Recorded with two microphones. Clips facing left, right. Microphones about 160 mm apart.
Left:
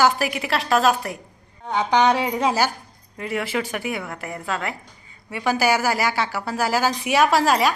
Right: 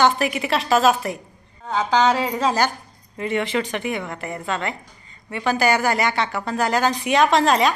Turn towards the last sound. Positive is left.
turn(degrees=5)  # may be behind; listen again after turning